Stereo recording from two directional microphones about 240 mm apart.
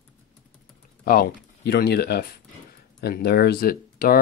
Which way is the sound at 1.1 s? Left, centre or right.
Left.